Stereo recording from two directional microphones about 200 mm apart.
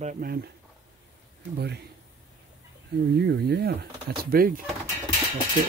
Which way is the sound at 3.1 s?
55° right (ahead or behind).